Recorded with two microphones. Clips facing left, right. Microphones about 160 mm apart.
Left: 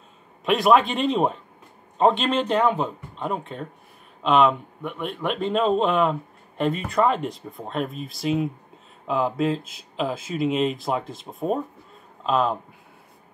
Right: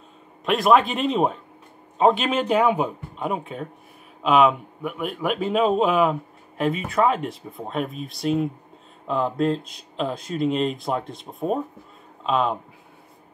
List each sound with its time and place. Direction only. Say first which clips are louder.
0.5 s speech: even; centre (ahead or behind)